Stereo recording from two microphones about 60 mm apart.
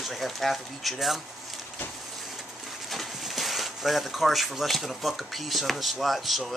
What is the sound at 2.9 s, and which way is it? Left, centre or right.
Speech, centre.